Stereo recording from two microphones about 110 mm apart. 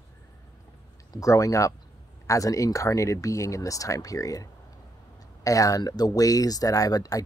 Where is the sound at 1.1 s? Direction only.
30° left (ahead or behind).